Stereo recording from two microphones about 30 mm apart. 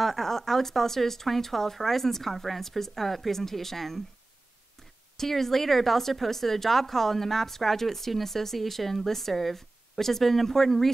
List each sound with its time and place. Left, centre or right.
0.0 s speech: centre
5.1 s speech: centre